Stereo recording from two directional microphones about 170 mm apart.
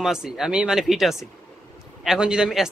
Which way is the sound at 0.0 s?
5° right (ahead or behind).